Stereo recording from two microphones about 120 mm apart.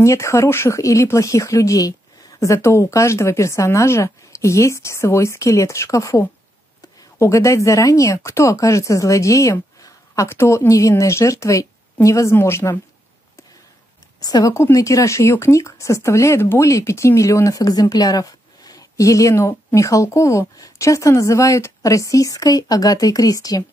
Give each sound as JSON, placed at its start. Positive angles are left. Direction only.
{"t": 0.0, "sound": "speech", "side_deg": 25}
{"t": 14.2, "sound": "speech", "side_deg": 30}